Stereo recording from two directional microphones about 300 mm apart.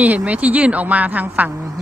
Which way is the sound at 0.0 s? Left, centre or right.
Centre.